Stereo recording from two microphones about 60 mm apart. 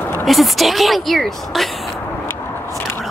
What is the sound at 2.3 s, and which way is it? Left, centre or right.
Biting, left.